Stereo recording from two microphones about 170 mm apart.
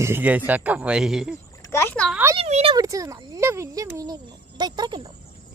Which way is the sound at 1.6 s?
15° left (ahead or behind).